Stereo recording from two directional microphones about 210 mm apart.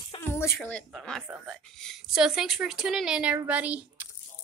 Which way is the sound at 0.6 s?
5° left (ahead or behind).